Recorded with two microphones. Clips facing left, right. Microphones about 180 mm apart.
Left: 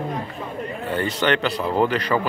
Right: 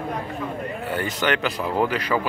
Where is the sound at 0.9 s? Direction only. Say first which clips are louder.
Left 3 dB; 10° right (ahead or behind).